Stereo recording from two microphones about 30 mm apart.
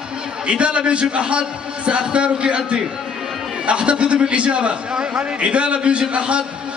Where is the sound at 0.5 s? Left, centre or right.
Right.